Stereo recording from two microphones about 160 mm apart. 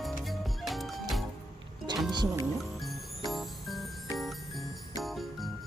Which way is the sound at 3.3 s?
Centre (ahead or behind).